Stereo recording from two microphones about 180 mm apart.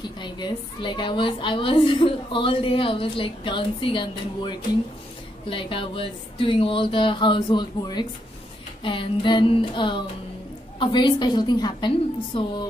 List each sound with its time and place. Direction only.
0.0 s a woman's voice: 25° left (ahead or behind)